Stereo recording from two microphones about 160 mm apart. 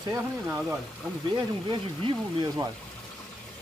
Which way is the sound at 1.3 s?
25° right (ahead or behind).